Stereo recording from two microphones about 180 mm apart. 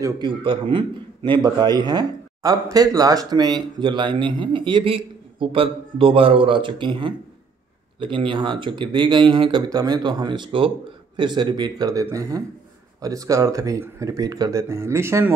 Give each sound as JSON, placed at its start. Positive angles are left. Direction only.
{"t": 0.0, "sound": "a man's voice", "side_deg": -25}